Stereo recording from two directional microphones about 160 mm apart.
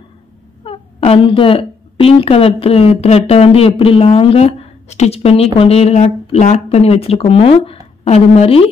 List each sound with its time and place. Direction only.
0.7 s a woman's voice: 35° left (ahead or behind)